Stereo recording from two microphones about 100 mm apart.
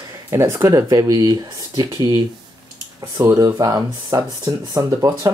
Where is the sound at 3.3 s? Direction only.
35° right (ahead or behind).